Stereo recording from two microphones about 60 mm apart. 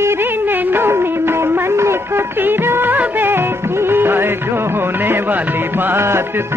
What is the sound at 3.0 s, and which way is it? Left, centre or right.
Music of bollywood, right.